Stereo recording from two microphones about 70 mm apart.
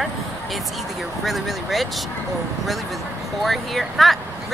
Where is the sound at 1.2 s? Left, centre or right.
Centre.